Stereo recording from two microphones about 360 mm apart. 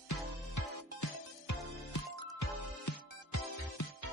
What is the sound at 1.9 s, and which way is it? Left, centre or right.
Music, left.